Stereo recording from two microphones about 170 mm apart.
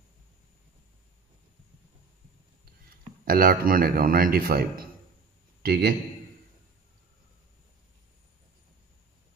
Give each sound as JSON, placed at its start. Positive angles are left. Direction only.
{"t": 3.3, "sound": "a man's voice", "side_deg": -60}